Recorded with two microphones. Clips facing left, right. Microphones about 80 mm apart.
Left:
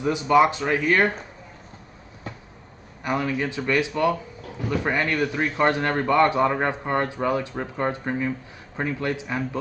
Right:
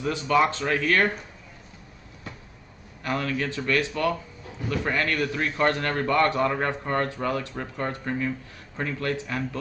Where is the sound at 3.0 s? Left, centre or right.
Centre.